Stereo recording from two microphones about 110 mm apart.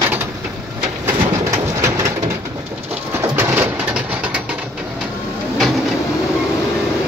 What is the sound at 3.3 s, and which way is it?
Bird, 15° right (ahead or behind).